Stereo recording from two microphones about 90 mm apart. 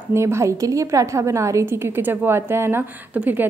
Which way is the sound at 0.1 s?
30° right (ahead or behind).